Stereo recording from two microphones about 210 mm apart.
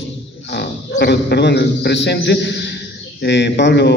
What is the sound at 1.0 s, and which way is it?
A man's voice, 55° left (ahead or behind).